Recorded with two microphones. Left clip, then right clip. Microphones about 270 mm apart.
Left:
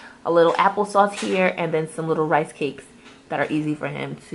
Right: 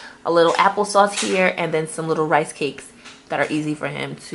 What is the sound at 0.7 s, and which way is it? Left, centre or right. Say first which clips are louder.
Speech: right 2 dB; centre.